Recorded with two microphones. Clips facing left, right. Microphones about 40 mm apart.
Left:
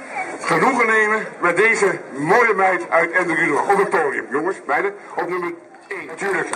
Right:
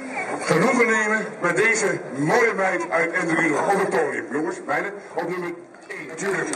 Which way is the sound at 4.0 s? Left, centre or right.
Centre.